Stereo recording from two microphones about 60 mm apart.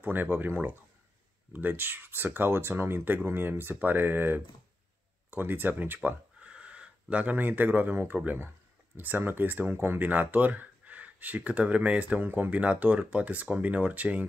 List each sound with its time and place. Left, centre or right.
0.0 s speech: right
6.0 s speech: right